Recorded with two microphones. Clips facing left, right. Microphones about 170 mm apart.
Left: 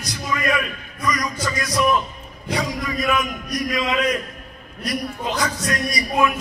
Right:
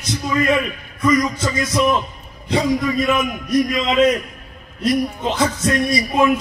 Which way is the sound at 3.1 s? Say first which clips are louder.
Right 5 dB; 25° right (ahead or behind).